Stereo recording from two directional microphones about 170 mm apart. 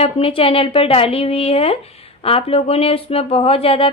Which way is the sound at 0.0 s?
35° left (ahead or behind).